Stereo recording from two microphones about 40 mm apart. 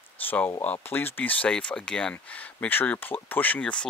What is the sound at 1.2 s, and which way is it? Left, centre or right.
Speech, left.